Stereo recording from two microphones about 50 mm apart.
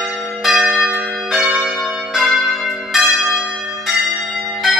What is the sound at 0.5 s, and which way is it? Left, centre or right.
Church bell, centre.